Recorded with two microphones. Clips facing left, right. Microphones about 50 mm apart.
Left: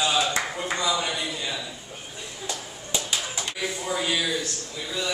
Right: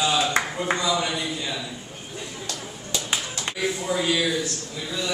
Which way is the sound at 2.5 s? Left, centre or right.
Centre.